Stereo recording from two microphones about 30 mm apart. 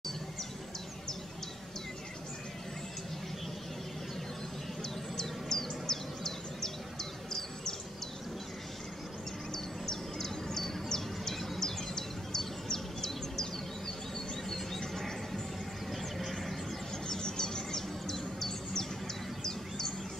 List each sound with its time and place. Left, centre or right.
5.1 s a sound: centre
9.5 s bird: centre
11.6 s a sound: centre
14.5 s music: centre
15.9 s music: centre
17.1 s chirp: centre